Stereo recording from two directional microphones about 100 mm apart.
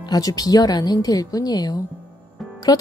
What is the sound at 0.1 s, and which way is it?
A woman's voice, 40° left (ahead or behind).